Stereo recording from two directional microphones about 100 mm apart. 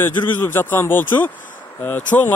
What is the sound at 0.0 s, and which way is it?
A man's voice, 20° left (ahead or behind).